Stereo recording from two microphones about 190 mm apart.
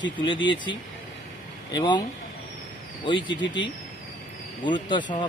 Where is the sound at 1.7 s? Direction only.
20° left (ahead or behind).